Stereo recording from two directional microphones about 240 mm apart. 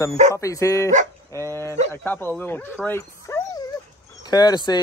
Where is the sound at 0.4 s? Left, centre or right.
Centre.